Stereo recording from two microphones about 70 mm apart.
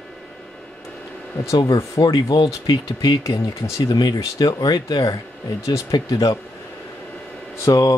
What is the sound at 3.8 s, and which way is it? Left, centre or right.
Speech, left.